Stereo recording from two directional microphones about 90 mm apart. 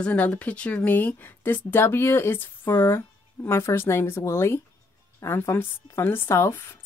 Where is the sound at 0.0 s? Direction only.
15° left (ahead or behind).